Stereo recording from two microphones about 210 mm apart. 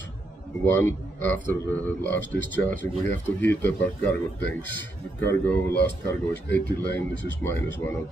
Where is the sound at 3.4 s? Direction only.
10° left (ahead or behind).